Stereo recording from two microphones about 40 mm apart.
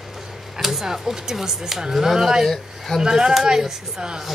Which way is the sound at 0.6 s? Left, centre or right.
Centre.